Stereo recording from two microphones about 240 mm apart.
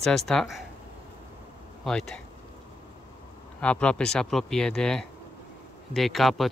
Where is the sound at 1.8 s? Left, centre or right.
Centre.